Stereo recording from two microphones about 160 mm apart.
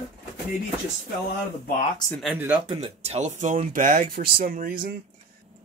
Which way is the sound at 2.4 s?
10° right (ahead or behind).